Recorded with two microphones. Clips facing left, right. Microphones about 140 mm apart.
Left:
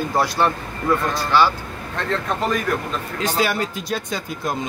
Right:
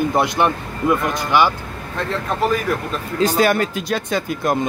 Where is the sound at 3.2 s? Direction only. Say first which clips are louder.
Right 6 dB; 50° right (ahead or behind).